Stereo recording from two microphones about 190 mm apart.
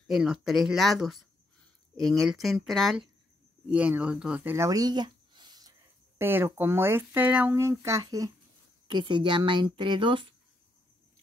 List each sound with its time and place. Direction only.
0.1 s speech: 5° right (ahead or behind); by 10.2 s 25° right (ahead or behind)